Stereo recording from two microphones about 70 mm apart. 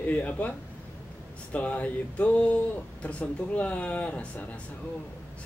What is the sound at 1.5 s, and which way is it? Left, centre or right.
Speech, centre.